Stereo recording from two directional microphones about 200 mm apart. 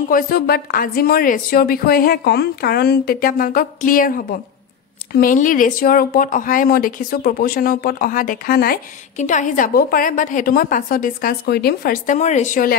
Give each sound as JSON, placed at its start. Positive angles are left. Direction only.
{"t": 0.1, "sound": "a woman's voice", "side_deg": 50}